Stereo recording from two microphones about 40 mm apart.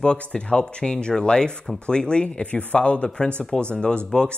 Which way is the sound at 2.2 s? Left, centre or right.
Left.